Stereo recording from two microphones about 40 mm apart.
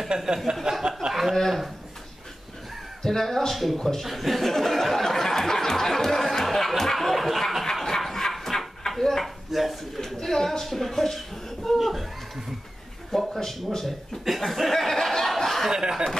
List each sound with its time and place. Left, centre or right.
0.1 s speech: centre
1.3 s speech: centre
3.0 s speech: centre
7.7 s dog: centre
9.5 s speech: centre
9.9 s speech: centre
13.4 s speech: centre
15.7 s speech: centre